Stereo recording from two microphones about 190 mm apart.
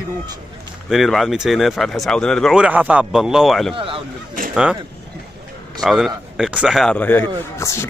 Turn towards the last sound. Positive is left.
turn(degrees=15)  # may be behind; listen again after turning